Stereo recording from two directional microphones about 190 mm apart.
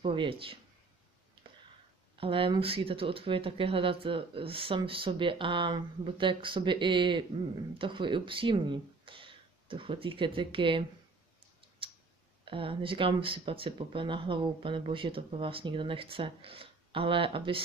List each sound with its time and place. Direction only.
0.0 s speech: 25° right (ahead or behind)
2.1 s speech: 30° right (ahead or behind)
11.8 s clicking: 30° right (ahead or behind)
12.4 s speech: 30° right (ahead or behind)